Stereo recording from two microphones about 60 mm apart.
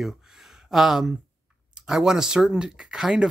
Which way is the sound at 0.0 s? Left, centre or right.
Centre.